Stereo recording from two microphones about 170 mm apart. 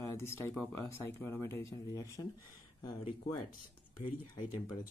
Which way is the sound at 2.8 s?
30° left (ahead or behind).